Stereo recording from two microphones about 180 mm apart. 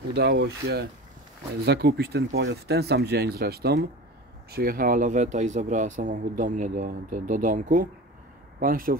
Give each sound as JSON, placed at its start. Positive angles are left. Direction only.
{"t": 0.1, "sound": "speech", "side_deg": -70}